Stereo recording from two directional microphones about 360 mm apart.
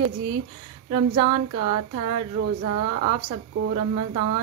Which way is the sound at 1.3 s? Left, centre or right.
Right.